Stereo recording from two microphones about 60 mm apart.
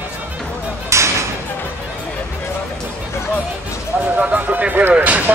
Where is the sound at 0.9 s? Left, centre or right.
Right.